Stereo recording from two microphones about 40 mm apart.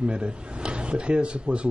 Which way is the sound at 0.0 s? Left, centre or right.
Right.